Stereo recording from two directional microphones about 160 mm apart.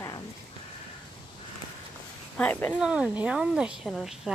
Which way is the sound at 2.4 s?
10° left (ahead or behind).